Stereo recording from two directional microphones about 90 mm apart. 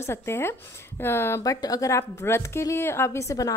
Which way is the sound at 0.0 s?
30° left (ahead or behind).